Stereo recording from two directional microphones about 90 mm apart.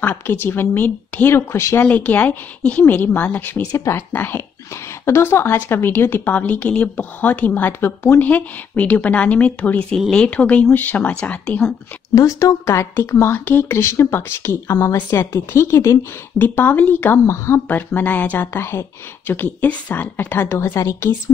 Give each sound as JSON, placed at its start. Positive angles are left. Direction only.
{"t": 0.0, "sound": "a woman's voice", "side_deg": 25}
{"t": 1.3, "sound": "a woman's voice", "side_deg": 30}
{"t": 1.9, "sound": "a woman's voice", "side_deg": 15}
{"t": 3.7, "sound": "a woman's voice", "side_deg": 30}
{"t": 8.3, "sound": "a woman's voice", "side_deg": 15}
{"t": 12.2, "sound": "a woman's voice", "side_deg": 40}
{"t": 16.3, "sound": "a woman's voice", "side_deg": 20}